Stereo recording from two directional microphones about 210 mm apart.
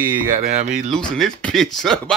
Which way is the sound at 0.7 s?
5° left (ahead or behind).